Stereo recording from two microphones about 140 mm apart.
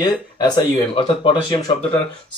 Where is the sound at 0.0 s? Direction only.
30° left (ahead or behind).